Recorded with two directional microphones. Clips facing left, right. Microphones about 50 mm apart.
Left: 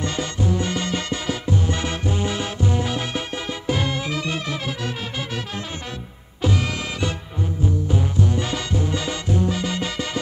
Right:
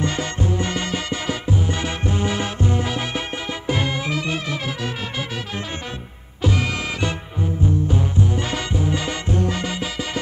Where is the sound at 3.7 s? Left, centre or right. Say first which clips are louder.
Right 1 dB; right.